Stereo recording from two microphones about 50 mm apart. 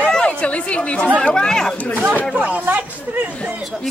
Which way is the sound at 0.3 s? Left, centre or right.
Left.